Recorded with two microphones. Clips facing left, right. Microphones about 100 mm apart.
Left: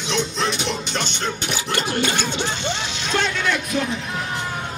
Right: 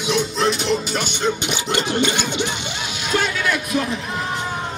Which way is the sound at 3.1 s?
5° right (ahead or behind).